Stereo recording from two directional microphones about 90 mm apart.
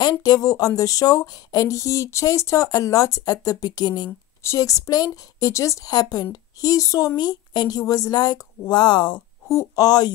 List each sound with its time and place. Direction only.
0.2 s speech: 40° left (ahead or behind)
4.4 s speech: 35° left (ahead or behind)
5.9 s a woman's voice: 50° left (ahead or behind)
9.5 s speech: 35° left (ahead or behind)
9.8 s a woman's voice: 45° left (ahead or behind)